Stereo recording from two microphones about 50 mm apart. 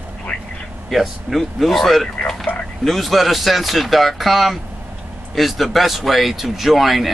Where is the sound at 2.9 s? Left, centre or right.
Centre.